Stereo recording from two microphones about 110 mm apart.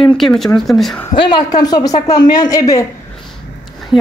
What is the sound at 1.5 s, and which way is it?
Speech, 40° left (ahead or behind).